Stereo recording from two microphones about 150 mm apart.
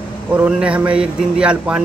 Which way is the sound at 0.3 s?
10° right (ahead or behind).